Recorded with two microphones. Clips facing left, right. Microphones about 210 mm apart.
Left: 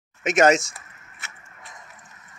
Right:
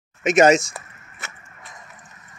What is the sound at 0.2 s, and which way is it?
Speech, 20° right (ahead or behind).